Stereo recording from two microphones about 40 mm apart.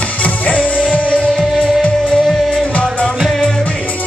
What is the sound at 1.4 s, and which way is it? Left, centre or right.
Music, centre.